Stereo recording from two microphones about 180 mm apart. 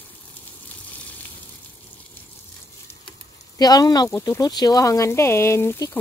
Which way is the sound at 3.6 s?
20° left (ahead or behind).